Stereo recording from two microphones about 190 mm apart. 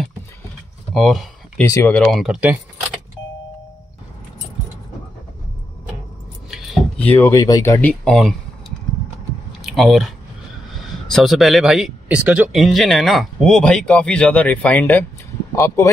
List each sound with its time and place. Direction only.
0.9 s speech: centre (ahead or behind)
1.6 s speech: 10° left (ahead or behind)
6.5 s keys jangling: centre (ahead or behind)
7.2 s speech: 15° left (ahead or behind)
8.0 s speech: centre (ahead or behind)
9.6 s speech: centre (ahead or behind); by 15.9 s 15° left (ahead or behind)